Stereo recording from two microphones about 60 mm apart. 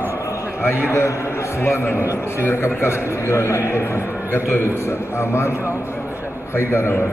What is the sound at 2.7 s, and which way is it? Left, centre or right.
A man's voice, left.